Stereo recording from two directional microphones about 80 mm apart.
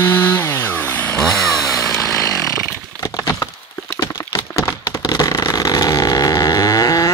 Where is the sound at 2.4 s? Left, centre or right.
Left.